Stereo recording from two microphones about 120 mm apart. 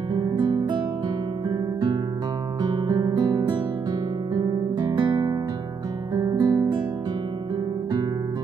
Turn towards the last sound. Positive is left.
turn(degrees=-35)  # may be behind; listen again after turning